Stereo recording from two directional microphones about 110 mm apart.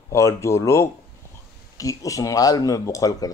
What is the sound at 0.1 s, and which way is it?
Speech, 25° left (ahead or behind).